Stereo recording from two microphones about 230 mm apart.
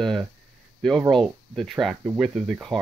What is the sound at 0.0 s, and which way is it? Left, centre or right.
Speech, centre.